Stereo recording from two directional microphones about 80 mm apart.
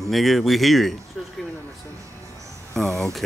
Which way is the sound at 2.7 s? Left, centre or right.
Centre.